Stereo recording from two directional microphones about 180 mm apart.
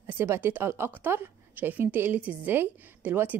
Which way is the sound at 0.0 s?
15° right (ahead or behind).